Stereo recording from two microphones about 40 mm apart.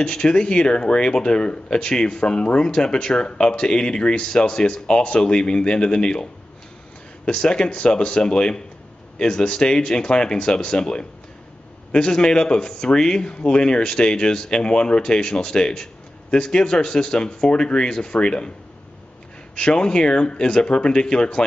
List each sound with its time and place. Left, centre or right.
0.0 s speech: left
7.2 s speech: left
19.5 s speech: left